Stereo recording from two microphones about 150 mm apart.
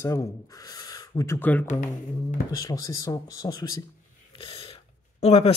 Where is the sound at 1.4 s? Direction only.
10° left (ahead or behind).